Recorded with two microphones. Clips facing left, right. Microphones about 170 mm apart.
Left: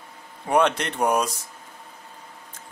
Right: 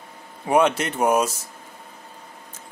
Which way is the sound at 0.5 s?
5° right (ahead or behind).